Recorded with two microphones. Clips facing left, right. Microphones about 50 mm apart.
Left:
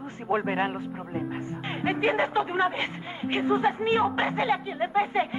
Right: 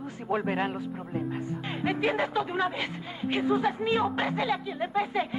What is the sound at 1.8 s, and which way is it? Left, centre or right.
Speech, left.